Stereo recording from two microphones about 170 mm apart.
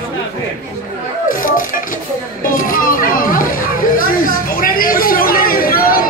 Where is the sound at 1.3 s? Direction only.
55° left (ahead or behind).